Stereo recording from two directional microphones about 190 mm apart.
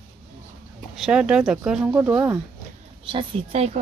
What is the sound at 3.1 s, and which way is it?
Speech, 30° right (ahead or behind).